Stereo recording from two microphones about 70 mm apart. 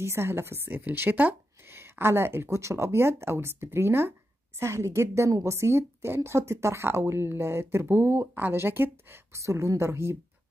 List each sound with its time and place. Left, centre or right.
0.0 s a woman's voice: right
9.4 s a woman's voice: right